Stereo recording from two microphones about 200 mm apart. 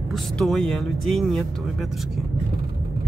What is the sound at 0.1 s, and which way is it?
Speech, centre (ahead or behind).